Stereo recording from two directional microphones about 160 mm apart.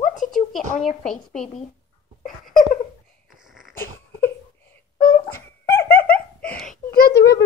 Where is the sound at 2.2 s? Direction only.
60° left (ahead or behind).